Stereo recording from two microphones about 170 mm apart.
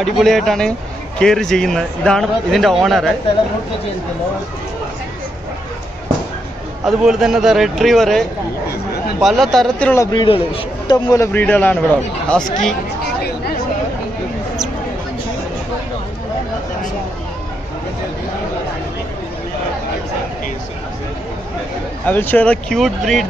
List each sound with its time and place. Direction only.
0.0 s a man's voice: centre (ahead or behind)
6.9 s a man's voice: 5° right (ahead or behind)
10.1 s speech: 30° left (ahead or behind)
11.1 s a man's voice: 15° left (ahead or behind)
22.0 s a man's voice: 10° left (ahead or behind)